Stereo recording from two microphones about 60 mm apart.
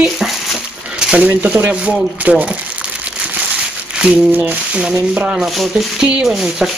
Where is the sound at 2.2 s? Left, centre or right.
Right.